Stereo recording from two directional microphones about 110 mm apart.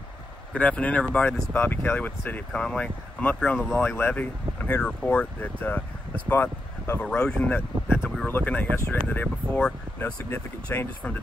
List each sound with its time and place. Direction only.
0.6 s speech: 10° left (ahead or behind)
7.5 s speech: 20° left (ahead or behind)